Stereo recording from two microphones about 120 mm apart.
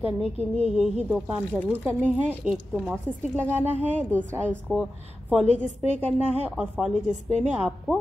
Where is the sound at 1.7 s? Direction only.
15° right (ahead or behind).